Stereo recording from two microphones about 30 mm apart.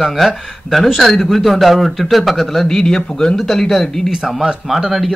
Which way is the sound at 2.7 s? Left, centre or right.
Centre.